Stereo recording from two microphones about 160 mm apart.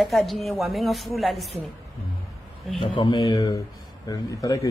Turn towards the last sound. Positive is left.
turn(degrees=20)  # may be behind; listen again after turning